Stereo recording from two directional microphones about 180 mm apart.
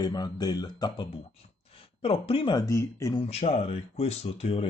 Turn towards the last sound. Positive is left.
turn(degrees=35)  # may be behind; listen again after turning